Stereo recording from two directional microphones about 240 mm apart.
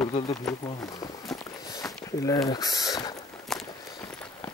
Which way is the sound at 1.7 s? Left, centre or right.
Centre.